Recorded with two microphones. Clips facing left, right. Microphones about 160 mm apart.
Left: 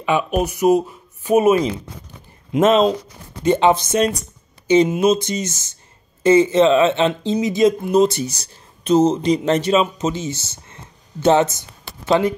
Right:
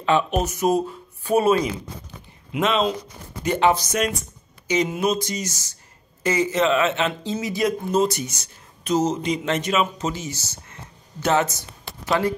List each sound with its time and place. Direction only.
0.0 s speech: 15° left (ahead or behind)
2.5 s speech: 40° left (ahead or behind)
3.4 s speech: 25° left (ahead or behind)
8.2 s speech: 35° left (ahead or behind)